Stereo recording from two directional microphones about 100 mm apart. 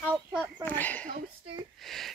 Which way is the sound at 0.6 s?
15° left (ahead or behind).